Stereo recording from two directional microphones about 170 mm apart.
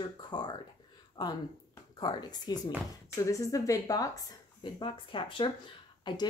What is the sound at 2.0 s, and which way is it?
Speech, 25° left (ahead or behind).